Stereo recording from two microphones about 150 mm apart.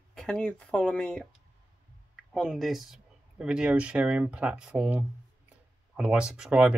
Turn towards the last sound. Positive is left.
turn(degrees=-5)  # may be behind; listen again after turning